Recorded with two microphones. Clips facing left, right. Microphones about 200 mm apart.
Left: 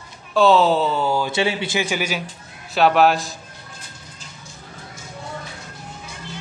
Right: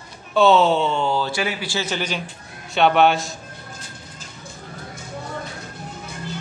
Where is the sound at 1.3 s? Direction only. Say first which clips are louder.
Left 4 dB; 25° left (ahead or behind); by 3.3 s centre (ahead or behind).